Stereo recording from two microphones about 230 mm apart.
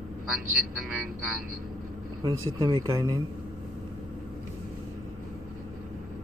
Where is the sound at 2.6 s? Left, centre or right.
Centre.